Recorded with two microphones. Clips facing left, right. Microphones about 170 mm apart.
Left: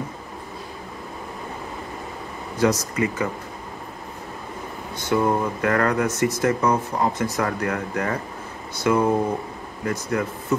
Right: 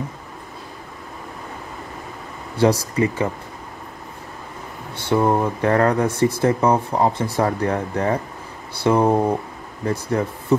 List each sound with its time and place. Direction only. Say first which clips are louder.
2.5 s speech: right 3 dB; 30° right (ahead or behind)
4.9 s speech: right 3 dB; 30° right (ahead or behind)